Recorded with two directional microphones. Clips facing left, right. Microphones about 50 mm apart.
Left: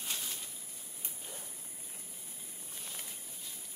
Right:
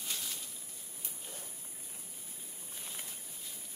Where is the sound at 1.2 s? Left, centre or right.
Centre.